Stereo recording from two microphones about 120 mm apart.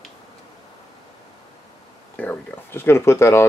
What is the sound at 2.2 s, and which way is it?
Speech, 15° left (ahead or behind).